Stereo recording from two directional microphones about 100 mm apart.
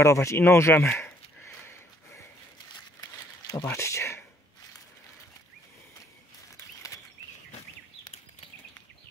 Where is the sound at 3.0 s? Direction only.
40° left (ahead or behind).